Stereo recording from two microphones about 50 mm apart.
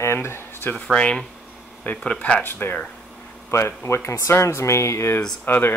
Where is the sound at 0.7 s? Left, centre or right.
Centre.